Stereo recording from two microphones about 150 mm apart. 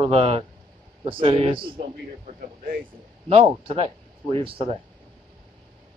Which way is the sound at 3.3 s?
40° right (ahead or behind).